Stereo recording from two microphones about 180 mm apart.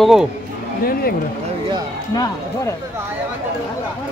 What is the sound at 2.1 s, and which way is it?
Speech, 20° left (ahead or behind).